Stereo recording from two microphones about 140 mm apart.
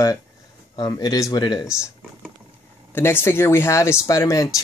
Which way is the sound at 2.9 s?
15° left (ahead or behind).